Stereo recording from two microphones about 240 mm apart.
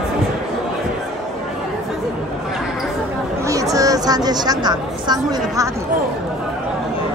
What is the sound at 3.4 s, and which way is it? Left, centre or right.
A woman's voice, centre.